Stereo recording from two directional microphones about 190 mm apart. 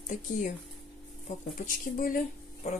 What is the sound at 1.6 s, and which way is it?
Speech, 50° left (ahead or behind).